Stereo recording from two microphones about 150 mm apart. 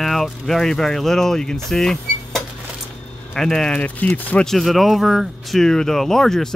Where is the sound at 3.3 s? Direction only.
5° left (ahead or behind).